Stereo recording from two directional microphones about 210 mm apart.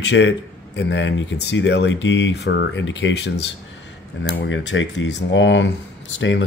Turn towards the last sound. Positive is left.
turn(degrees=60)  # may be behind; listen again after turning